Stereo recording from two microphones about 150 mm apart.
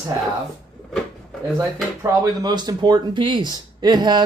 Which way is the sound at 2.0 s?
25° right (ahead or behind).